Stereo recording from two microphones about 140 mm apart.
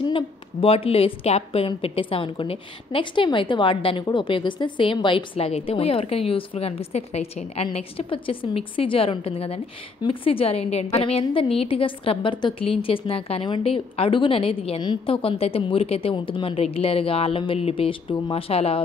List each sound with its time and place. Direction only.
0.1 s a woman's voice: 40° left (ahead or behind)